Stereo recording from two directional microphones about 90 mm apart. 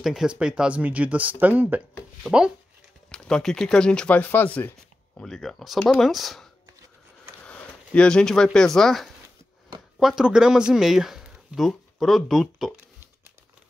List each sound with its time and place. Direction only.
0.0 s speech: 5° right (ahead or behind)
3.1 s speech: 10° left (ahead or behind)
5.2 s speech: 5° left (ahead or behind)
7.4 s speech: 10° left (ahead or behind)